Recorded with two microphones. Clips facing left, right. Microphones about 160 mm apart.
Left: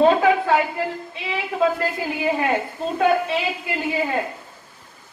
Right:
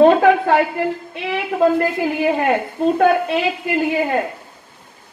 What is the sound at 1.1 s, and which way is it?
A woman's voice, 50° right (ahead or behind).